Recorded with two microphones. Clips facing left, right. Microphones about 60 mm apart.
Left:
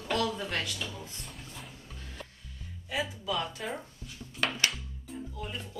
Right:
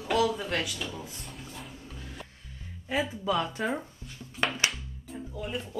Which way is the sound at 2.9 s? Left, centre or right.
Right.